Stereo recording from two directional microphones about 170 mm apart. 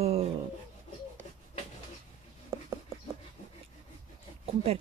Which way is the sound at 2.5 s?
15° right (ahead or behind).